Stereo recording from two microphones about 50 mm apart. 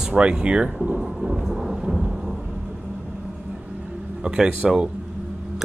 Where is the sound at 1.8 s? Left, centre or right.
Centre.